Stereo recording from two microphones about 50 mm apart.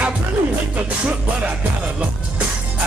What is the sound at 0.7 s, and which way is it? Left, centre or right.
Music, right.